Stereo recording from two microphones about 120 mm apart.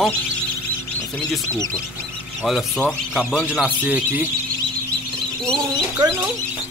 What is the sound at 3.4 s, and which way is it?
Speech, 10° right (ahead or behind).